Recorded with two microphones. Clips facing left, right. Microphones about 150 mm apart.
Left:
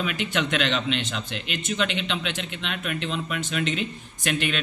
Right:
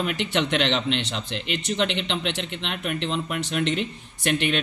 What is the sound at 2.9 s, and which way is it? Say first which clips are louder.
Speech: right 2 dB; 65° right (ahead or behind).